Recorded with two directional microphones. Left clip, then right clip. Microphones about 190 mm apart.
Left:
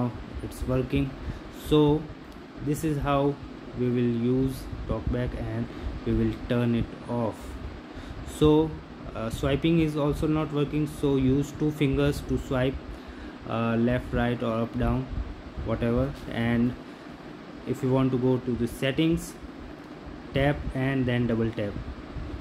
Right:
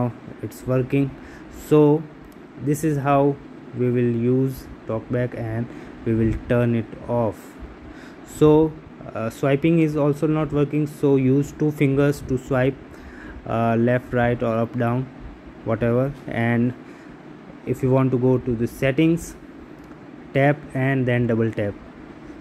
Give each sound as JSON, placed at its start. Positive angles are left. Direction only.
{"t": 0.7, "sound": "speech", "side_deg": -20}
{"t": 8.4, "sound": "speech", "side_deg": -25}
{"t": 17.6, "sound": "speech", "side_deg": -25}
{"t": 20.3, "sound": "speech", "side_deg": -25}